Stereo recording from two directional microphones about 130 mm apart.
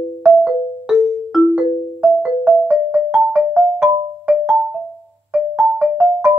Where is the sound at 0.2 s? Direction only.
10° right (ahead or behind).